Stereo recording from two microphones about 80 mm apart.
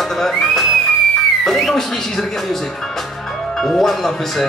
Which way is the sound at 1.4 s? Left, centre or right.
Centre.